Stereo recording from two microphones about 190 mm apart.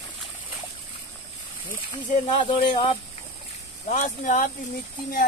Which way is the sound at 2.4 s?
30° left (ahead or behind).